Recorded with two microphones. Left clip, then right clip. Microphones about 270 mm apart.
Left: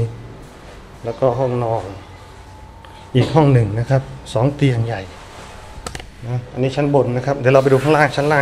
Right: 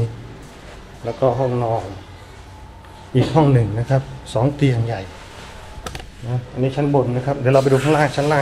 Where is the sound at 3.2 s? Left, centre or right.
Centre.